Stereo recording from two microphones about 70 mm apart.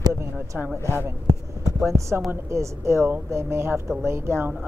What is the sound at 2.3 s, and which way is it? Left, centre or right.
Speech, right.